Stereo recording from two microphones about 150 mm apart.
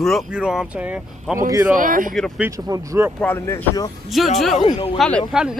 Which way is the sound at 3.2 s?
15° left (ahead or behind).